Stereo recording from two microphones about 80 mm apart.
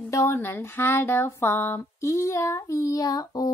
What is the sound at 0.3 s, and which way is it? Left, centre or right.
A woman's voice, left.